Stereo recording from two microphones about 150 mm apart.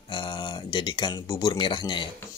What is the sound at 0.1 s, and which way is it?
Speech, 35° left (ahead or behind).